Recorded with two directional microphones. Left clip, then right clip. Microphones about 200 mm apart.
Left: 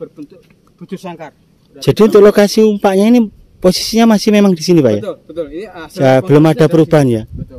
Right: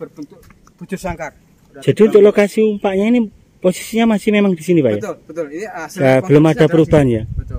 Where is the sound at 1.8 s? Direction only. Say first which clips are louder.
Left 2 dB; 25° left (ahead or behind).